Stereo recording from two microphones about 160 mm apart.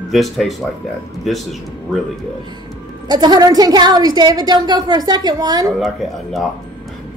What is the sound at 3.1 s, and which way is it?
A woman's voice, 25° right (ahead or behind).